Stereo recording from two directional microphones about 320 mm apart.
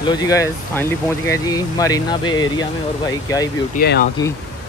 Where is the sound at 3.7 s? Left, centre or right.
Left.